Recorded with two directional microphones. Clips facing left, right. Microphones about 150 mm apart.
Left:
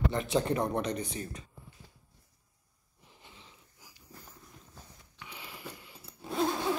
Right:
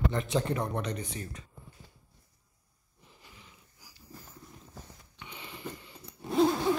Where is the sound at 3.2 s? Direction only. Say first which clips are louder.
Left 1 dB; 25° left (ahead or behind).